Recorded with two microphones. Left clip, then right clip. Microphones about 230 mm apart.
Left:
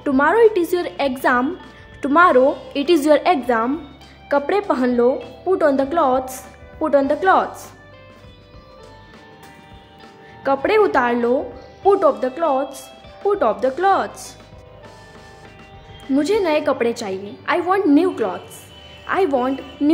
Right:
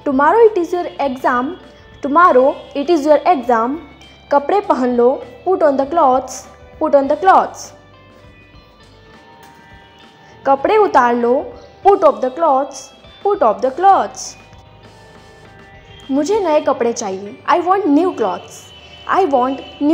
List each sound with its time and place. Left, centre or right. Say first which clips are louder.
0.0 s a woman's voice: right 4 dB; centre
2.1 s speech: right 3 dB; centre
10.4 s speech: right 4 dB; centre
16.1 s speech: right 3 dB; centre